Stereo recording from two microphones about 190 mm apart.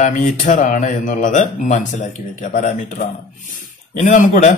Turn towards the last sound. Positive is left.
turn(degrees=45)  # may be behind; listen again after turning